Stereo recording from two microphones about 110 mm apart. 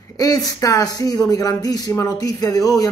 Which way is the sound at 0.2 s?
35° left (ahead or behind).